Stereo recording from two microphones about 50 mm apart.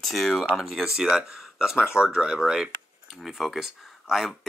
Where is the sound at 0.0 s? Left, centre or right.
Centre.